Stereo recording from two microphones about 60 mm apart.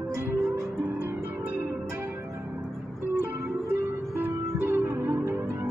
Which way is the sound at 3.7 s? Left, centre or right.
Right.